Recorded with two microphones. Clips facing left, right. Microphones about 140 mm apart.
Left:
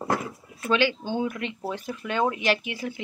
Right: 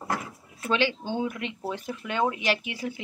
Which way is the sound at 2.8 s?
30° right (ahead or behind).